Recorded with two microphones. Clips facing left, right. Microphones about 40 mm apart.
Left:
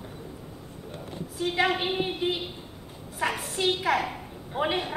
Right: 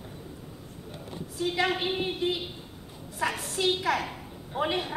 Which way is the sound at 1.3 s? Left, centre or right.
Centre.